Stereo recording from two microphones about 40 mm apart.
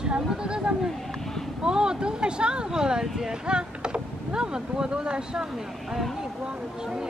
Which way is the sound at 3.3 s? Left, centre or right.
Right.